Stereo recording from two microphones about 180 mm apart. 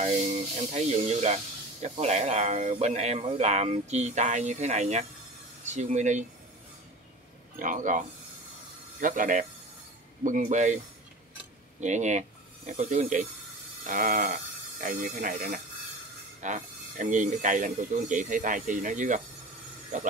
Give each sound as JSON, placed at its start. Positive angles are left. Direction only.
{"t": 0.0, "sound": "speech", "side_deg": -35}
{"t": 7.5, "sound": "speech", "side_deg": -45}
{"t": 9.0, "sound": "speech", "side_deg": -50}
{"t": 11.8, "sound": "speech", "side_deg": -40}